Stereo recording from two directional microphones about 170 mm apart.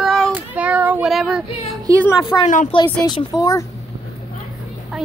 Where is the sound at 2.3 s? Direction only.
15° left (ahead or behind).